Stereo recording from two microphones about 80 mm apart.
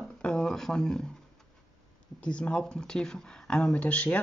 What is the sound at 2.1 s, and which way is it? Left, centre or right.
Speech, centre.